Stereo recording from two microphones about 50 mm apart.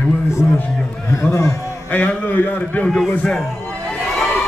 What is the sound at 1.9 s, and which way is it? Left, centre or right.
Speech, left.